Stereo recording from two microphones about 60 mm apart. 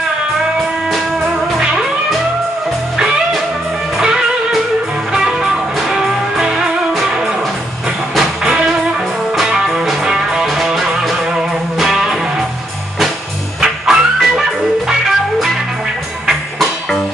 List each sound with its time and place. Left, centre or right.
5.1 s music: centre
9.4 s music: centre
13.6 s music: centre